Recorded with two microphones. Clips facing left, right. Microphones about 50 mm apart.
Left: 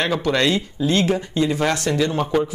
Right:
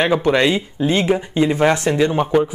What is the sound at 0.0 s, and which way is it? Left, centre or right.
Speech, right.